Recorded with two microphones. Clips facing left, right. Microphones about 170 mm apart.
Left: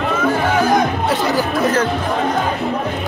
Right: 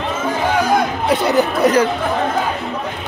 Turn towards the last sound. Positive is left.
turn(degrees=-15)  # may be behind; listen again after turning